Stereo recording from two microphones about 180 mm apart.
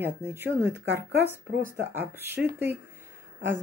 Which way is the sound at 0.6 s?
75° right (ahead or behind).